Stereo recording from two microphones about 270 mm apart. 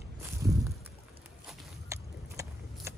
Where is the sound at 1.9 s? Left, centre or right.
Centre.